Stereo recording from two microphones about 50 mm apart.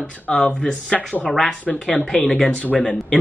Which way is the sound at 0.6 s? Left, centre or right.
Centre.